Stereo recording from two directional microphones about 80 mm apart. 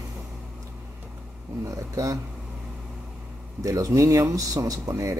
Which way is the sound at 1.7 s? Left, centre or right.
Right.